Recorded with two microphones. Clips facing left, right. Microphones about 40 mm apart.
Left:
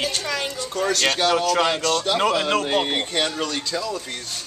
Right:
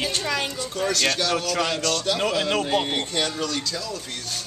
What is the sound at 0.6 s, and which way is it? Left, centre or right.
Speech, centre.